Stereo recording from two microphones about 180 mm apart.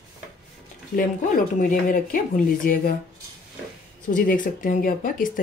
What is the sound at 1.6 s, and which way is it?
Speech, 45° left (ahead or behind).